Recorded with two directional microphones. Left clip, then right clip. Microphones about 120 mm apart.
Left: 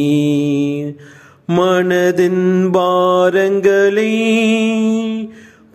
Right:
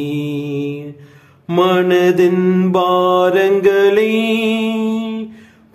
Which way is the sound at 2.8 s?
50° left (ahead or behind).